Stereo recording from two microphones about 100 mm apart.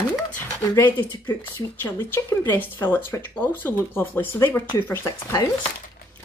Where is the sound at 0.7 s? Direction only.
20° left (ahead or behind).